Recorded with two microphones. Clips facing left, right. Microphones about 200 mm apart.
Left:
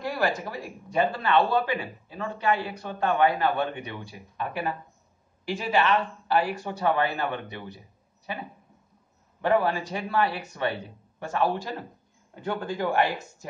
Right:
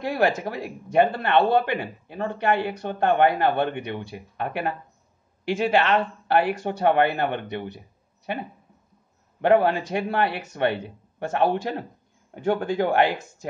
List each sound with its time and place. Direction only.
0.0 s a man's voice: 60° right (ahead or behind)
9.4 s a man's voice: 60° right (ahead or behind)